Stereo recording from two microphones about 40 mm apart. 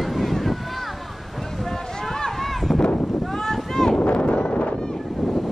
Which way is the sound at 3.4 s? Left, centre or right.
Centre.